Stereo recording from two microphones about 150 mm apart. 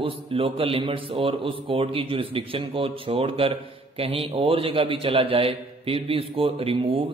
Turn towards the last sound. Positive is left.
turn(degrees=-35)  # may be behind; listen again after turning